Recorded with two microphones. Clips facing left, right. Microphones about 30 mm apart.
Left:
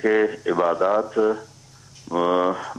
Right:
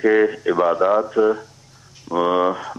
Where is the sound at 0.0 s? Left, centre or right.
Centre.